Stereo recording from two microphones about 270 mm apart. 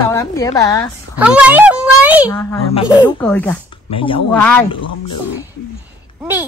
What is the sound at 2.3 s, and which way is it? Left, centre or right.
Speech, centre.